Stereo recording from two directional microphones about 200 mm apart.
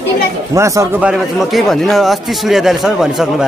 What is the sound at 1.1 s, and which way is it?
Speech, centre (ahead or behind).